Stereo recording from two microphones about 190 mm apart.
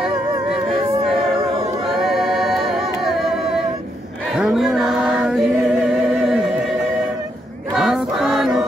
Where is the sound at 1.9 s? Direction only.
Centre (ahead or behind).